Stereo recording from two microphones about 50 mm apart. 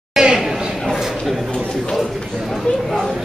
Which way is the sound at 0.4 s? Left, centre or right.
Centre.